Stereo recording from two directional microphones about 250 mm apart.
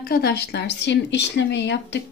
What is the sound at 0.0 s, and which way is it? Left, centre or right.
Speech, left.